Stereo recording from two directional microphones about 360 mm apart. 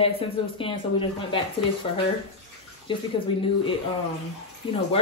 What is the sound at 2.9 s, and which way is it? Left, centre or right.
Speech, centre.